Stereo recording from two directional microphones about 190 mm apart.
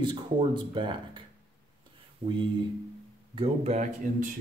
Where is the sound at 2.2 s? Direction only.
25° right (ahead or behind).